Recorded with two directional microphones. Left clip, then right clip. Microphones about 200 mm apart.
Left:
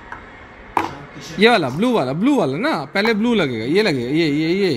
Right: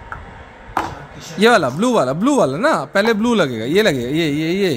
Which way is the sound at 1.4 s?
25° right (ahead or behind).